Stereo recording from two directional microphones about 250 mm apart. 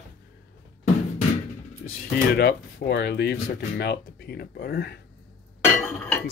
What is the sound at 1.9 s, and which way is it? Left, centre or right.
Speech, left.